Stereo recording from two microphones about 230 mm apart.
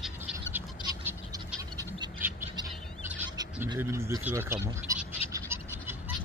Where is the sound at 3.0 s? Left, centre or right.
Centre.